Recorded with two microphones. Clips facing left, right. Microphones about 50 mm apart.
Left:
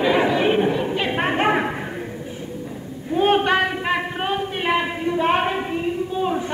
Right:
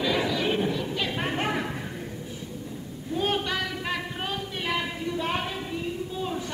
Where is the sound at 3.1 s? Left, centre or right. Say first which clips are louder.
Left 10 dB; left.